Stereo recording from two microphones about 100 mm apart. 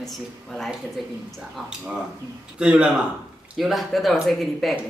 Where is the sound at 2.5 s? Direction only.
10° right (ahead or behind).